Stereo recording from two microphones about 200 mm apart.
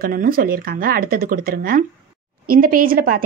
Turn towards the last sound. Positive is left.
turn(degrees=-45)  # may be behind; listen again after turning